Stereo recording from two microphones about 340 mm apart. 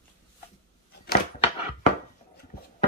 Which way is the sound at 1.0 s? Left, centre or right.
Left.